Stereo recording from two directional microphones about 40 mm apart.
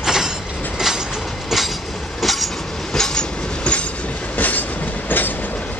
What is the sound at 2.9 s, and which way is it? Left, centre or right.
Train, centre.